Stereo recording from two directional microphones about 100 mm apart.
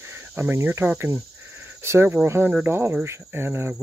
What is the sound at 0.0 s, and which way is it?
Speech, 25° right (ahead or behind).